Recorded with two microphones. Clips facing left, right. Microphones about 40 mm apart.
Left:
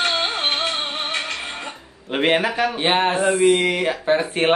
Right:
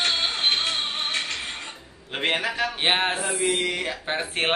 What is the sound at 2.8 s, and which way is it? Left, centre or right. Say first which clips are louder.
Speech: left 3 dB; centre.